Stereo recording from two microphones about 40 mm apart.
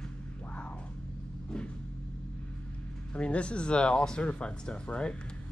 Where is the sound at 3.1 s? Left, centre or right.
Left.